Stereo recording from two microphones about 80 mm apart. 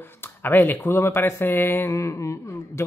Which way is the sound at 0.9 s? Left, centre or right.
Left.